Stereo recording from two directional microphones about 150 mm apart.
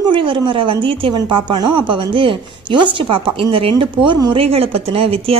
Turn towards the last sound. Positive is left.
turn(degrees=-40)  # may be behind; listen again after turning